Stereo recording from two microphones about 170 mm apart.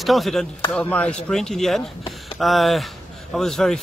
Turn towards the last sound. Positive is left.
turn(degrees=5)  # may be behind; listen again after turning